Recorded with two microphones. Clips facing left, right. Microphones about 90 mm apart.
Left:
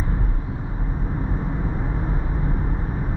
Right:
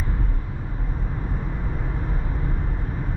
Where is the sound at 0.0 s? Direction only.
15° left (ahead or behind).